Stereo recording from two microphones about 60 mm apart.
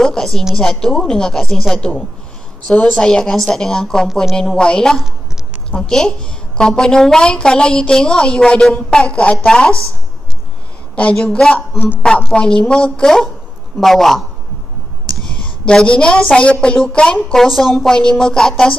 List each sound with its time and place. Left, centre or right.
0.0 s a sound: centre
0.6 s a woman's voice: centre
1.8 s a woman's voice: centre
11.0 s a woman's voice: centre
11.2 s a woman's voice: centre
15.6 s a woman's voice: centre
17.3 s a woman's voice: centre